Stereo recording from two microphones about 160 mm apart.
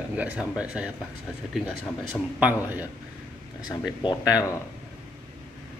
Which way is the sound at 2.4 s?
10° right (ahead or behind).